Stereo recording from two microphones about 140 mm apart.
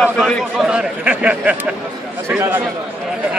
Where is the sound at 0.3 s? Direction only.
5° left (ahead or behind).